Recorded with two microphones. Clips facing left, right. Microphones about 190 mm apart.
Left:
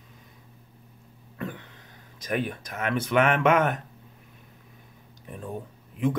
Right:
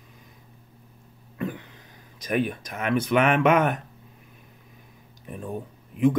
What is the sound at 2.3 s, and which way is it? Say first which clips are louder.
Speech: right 3 dB; 15° right (ahead or behind).